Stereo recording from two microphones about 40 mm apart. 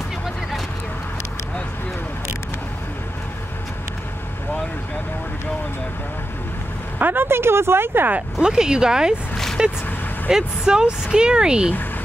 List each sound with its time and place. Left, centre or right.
7.0 s a sound: right
7.2 s speech: right
8.4 s speech: centre